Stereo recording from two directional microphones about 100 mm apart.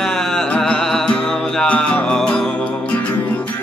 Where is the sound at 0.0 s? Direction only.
5° left (ahead or behind).